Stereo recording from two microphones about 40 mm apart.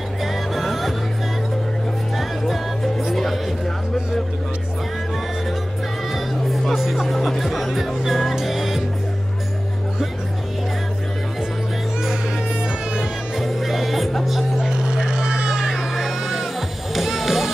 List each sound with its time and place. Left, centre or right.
0.2 s music: centre
2.1 s music: centre
6.1 s music: centre
13.4 s music: centre
14.6 s a sound: centre
16.9 s music: centre